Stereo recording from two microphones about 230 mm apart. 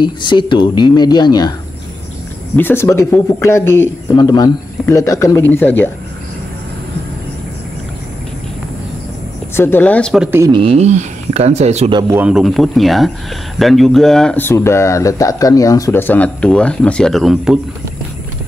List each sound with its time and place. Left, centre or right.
0.0 s speech: centre
2.5 s speech: centre
9.6 s speech: centre
10.5 s speech: right
12.2 s speech: centre